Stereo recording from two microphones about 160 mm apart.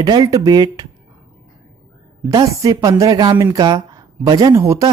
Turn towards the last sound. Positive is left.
turn(degrees=-20)  # may be behind; listen again after turning